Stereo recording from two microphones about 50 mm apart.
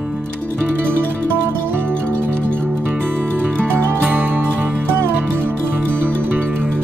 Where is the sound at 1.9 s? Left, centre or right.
Left.